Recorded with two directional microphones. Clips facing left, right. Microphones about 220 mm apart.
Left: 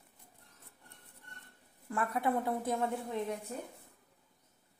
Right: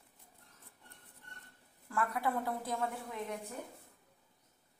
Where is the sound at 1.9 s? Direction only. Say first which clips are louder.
Left 2 dB; 20° left (ahead or behind).